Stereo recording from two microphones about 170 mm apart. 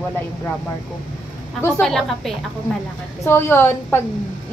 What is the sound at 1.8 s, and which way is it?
A woman's voice, 5° left (ahead or behind).